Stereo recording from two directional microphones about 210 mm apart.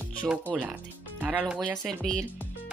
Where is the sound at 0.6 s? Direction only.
5° right (ahead or behind).